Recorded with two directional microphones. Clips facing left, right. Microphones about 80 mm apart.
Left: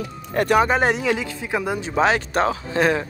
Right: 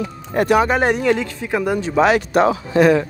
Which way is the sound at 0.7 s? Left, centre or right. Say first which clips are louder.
Right 2 dB; left.